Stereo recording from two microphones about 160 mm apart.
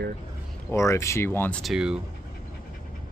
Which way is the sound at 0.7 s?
20° left (ahead or behind).